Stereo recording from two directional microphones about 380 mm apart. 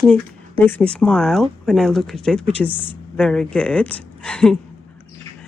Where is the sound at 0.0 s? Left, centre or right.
Centre.